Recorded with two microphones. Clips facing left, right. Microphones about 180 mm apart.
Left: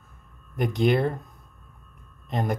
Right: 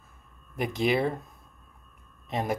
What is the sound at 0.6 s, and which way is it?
Speech, centre (ahead or behind).